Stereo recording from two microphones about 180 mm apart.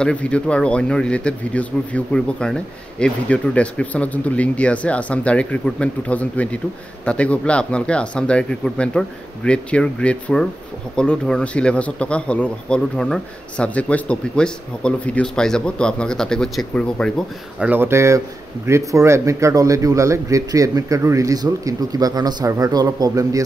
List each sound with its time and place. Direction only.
0.0 s a man's voice: 5° left (ahead or behind)
17.6 s a man's voice: 10° right (ahead or behind)